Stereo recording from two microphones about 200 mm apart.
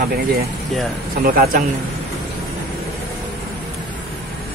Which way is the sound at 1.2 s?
45° right (ahead or behind).